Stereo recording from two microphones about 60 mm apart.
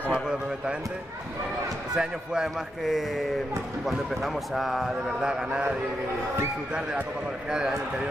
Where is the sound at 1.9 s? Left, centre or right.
Centre.